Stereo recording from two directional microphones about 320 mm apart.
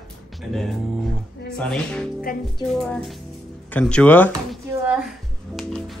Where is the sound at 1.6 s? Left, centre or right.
Centre.